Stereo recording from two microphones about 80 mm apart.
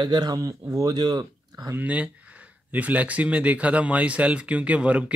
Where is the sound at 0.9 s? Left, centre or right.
Right.